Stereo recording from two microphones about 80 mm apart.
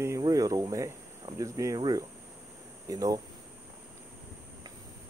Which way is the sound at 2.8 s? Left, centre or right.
Right.